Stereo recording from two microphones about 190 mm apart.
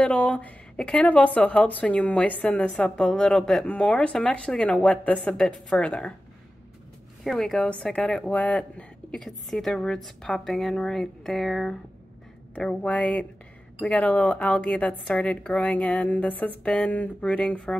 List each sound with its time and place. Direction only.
0.0 s speech: 5° left (ahead or behind)
7.2 s a woman's voice: centre (ahead or behind)